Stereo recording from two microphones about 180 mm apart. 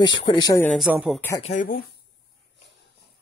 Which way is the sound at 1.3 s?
35° left (ahead or behind).